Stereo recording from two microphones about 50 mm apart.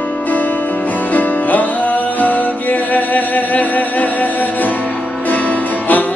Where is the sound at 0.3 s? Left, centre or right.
Left.